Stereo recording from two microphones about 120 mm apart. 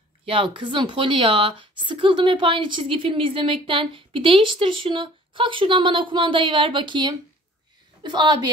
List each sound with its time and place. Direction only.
0.2 s a woman's voice: 45° right (ahead or behind)